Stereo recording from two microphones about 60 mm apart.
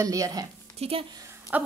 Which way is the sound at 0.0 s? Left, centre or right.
Right.